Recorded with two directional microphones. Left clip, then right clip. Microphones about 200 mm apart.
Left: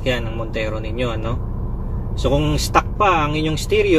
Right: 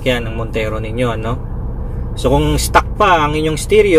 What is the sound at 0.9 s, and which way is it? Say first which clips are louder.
Speech: right 7 dB; 40° right (ahead or behind).